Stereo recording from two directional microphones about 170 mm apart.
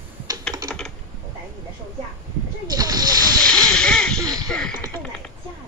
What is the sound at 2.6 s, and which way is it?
Splash, 20° right (ahead or behind).